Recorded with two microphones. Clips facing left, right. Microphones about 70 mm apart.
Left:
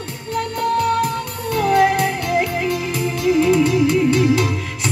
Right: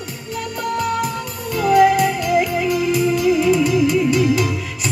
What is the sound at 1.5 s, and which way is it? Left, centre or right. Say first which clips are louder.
Music: right 2 dB; left.